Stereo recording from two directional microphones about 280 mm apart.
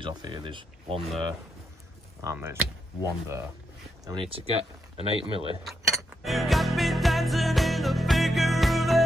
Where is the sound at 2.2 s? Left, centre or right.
Centre.